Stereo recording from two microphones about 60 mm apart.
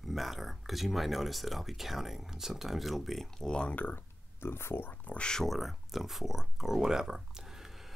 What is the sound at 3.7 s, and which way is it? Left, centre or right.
Speech, left.